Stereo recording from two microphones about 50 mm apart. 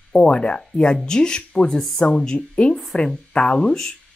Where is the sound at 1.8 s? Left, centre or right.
Centre.